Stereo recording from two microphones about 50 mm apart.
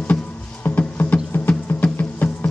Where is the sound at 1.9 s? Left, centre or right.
Left.